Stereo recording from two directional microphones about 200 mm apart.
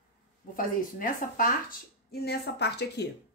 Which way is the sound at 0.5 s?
45° left (ahead or behind).